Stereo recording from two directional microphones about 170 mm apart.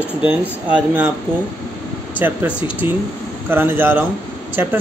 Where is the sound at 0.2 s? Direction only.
10° right (ahead or behind).